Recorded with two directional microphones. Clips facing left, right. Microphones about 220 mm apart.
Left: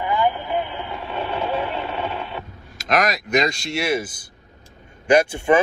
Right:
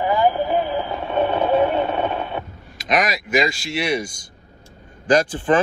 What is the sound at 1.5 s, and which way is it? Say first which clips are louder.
Radio: right 7 dB; 45° right (ahead or behind).